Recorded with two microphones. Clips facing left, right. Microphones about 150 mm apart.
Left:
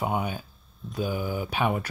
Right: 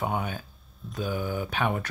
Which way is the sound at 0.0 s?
10° left (ahead or behind).